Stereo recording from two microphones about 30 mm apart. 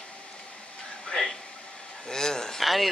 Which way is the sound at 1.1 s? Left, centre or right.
Left.